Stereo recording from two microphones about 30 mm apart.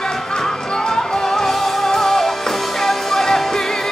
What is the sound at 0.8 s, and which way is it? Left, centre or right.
Music, centre.